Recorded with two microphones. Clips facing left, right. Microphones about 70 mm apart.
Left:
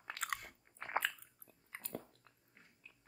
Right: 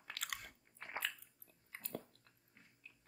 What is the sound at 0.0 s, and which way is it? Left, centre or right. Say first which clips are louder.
Biting: left 5 dB; left.